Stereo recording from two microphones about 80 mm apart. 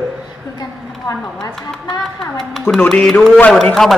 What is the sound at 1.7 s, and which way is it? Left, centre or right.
A man's voice, centre.